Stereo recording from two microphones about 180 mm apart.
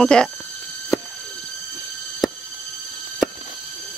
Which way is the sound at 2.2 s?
Centre (ahead or behind).